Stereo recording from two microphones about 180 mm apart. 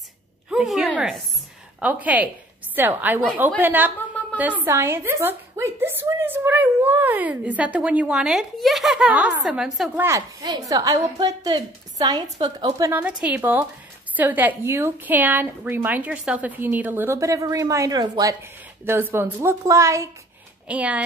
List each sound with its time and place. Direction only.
0.5 s a sound: centre (ahead or behind)
1.8 s a woman's voice: 10° right (ahead or behind)
10.0 s a woman's voice: 20° right (ahead or behind)